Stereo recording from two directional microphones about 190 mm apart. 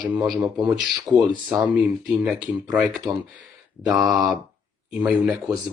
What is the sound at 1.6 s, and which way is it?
Speech, 5° right (ahead or behind).